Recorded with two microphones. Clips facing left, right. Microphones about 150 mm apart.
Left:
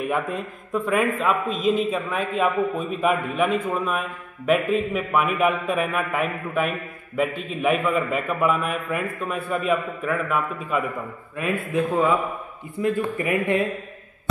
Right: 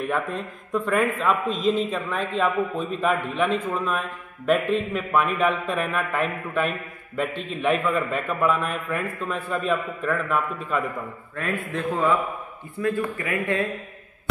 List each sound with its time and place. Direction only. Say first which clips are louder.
0.0 s a man's voice: left 1 dB; 5° left (ahead or behind)